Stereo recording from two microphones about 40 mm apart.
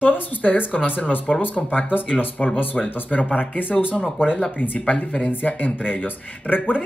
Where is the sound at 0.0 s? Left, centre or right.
Left.